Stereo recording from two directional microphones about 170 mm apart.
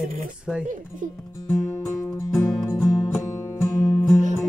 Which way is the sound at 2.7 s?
Centre (ahead or behind).